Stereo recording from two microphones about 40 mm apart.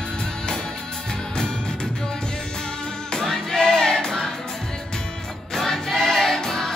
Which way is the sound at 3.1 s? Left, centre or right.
Centre.